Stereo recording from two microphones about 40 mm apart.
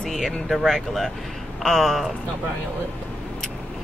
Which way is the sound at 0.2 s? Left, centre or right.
Centre.